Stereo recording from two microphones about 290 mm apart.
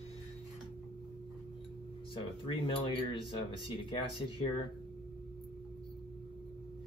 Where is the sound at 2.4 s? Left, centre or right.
Centre.